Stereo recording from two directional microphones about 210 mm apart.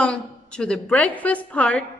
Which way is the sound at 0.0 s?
5° left (ahead or behind).